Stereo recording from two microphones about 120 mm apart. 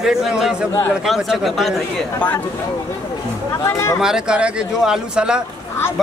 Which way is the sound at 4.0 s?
5° right (ahead or behind).